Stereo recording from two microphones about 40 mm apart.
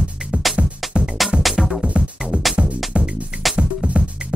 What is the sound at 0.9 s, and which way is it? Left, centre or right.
Music, right.